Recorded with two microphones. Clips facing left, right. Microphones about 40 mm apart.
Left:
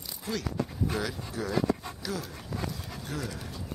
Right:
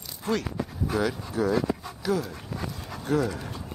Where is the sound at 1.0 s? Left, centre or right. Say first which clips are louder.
Right 7 dB; centre.